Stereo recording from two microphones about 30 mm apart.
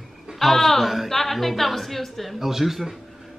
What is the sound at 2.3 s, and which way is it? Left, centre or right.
Speech, centre.